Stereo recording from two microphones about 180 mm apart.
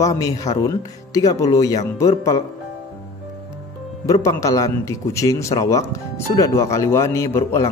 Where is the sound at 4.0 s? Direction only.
15° left (ahead or behind).